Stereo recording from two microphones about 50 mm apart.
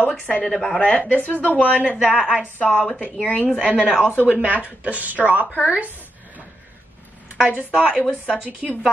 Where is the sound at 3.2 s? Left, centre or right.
Left.